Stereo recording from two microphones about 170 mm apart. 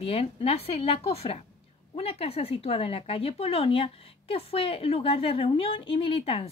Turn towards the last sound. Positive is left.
turn(degrees=35)  # may be behind; listen again after turning